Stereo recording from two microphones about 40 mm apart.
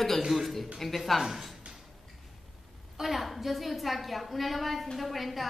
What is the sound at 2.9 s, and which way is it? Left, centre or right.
A woman's voice, centre.